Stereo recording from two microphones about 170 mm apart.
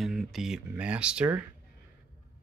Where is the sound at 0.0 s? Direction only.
Centre (ahead or behind).